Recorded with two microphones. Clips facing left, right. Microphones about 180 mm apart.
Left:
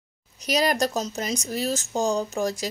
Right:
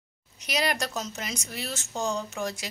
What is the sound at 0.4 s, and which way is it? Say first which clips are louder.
Speech: left 6 dB; 40° left (ahead or behind).